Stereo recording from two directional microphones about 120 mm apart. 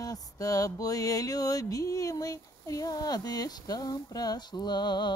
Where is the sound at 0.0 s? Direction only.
30° left (ahead or behind).